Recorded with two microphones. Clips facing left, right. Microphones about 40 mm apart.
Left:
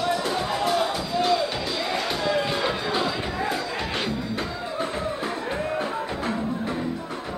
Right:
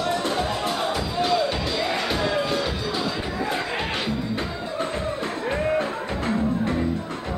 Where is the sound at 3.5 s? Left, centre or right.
Right.